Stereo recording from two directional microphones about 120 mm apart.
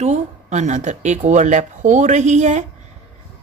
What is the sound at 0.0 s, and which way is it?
Speech, 80° right.